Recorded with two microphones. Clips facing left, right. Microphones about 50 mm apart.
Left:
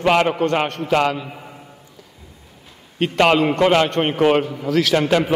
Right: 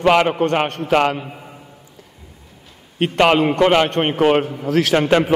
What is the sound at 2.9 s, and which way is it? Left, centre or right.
Speech, right.